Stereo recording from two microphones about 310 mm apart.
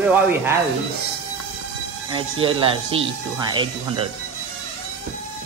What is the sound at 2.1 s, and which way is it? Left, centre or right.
Speech, centre.